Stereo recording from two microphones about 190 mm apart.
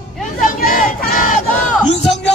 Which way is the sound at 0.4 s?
45° left (ahead or behind).